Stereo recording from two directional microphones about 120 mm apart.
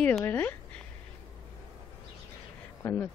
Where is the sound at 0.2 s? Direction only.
15° left (ahead or behind).